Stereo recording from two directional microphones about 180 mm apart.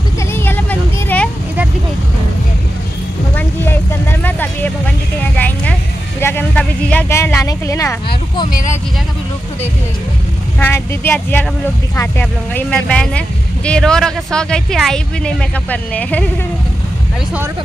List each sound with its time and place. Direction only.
0.3 s vehicle: 10° left (ahead or behind)
3.3 s music: 10° left (ahead or behind)
5.3 s a sound: 5° left (ahead or behind)
8.5 s speech: 50° left (ahead or behind)
10.6 s speech: 10° left (ahead or behind)